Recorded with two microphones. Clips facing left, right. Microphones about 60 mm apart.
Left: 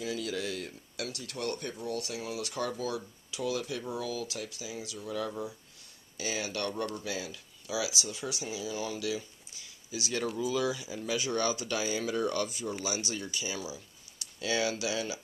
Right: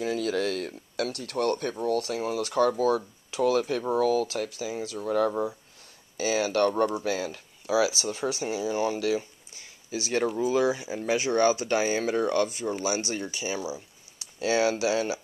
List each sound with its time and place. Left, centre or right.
0.0 s speech: right
1.8 s speech: right
6.4 s speech: right